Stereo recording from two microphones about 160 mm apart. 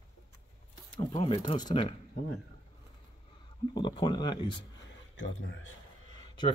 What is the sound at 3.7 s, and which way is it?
Speech, 30° left (ahead or behind).